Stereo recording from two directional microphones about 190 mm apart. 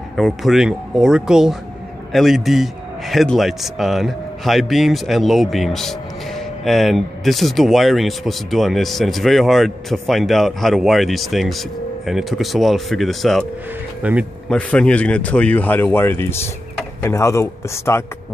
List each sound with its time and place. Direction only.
0.1 s a man's voice: centre (ahead or behind)
14.5 s speech: 5° left (ahead or behind)